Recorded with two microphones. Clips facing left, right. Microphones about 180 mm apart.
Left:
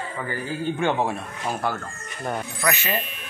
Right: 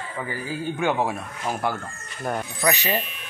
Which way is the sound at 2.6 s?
20° right (ahead or behind).